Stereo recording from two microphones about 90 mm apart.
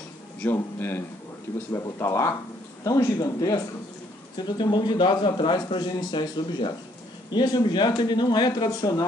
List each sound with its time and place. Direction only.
0.4 s a man's voice: 20° left (ahead or behind); by 3.6 s 40° left (ahead or behind)
4.4 s speech: 55° left (ahead or behind)